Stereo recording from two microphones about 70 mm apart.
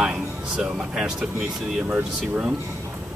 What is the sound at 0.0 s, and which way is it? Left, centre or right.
Speech, centre.